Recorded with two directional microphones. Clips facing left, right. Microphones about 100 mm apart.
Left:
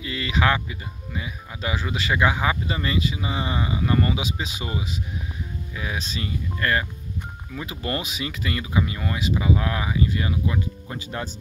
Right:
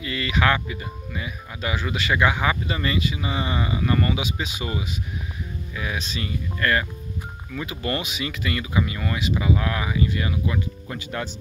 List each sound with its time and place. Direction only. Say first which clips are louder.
0.0 s speech: right 1 dB; 25° left (ahead or behind)